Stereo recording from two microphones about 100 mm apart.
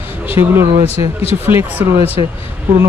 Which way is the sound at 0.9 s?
90° left.